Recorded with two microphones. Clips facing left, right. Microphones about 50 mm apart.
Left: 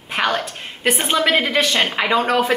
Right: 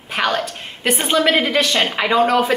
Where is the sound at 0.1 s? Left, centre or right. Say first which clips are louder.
Even; centre.